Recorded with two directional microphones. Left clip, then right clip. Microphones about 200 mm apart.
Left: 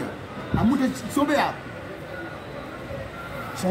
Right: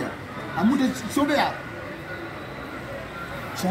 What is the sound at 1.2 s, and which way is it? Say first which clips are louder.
Speech: even; 10° right (ahead or behind).